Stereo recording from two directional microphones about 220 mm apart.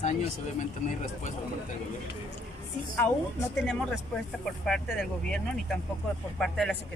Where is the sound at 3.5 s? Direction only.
5° left (ahead or behind).